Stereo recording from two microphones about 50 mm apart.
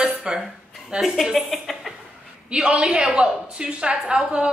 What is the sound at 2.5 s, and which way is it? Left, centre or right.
A woman's voice, centre.